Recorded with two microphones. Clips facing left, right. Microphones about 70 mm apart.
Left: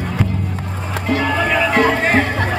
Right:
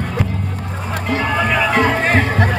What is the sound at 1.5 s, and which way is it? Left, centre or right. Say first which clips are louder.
Music: left 1 dB; centre.